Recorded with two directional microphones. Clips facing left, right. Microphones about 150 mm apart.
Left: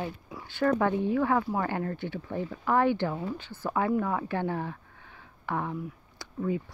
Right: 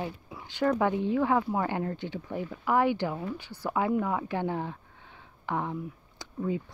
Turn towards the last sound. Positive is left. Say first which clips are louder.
# left 1 dB
turn(degrees=-20)  # may be behind; listen again after turning